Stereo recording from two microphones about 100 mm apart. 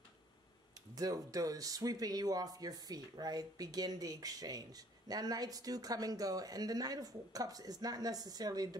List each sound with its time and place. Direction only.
0.9 s speech: 40° right (ahead or behind)